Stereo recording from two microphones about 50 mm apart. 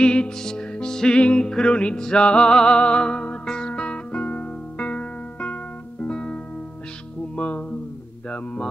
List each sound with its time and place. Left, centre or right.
0.0 s music: centre